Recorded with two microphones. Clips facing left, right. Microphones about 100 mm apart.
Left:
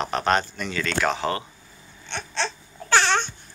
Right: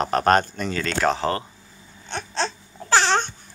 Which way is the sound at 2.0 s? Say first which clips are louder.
Right 2 dB; 40° right (ahead or behind).